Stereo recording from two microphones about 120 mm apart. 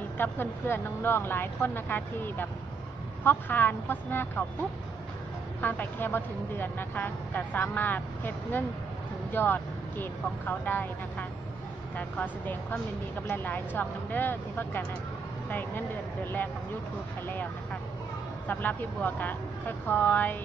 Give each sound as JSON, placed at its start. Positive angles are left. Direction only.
{"t": 0.2, "sound": "speech", "side_deg": 20}
{"t": 5.6, "sound": "speech", "side_deg": 15}
{"t": 18.5, "sound": "speech", "side_deg": 15}